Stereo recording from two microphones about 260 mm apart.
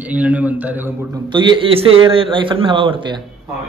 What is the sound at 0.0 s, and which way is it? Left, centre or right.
Speech, centre.